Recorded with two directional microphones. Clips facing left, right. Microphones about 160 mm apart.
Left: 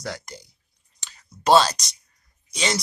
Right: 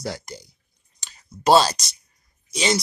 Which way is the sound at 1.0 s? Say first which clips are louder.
Right 2 dB; 10° right (ahead or behind).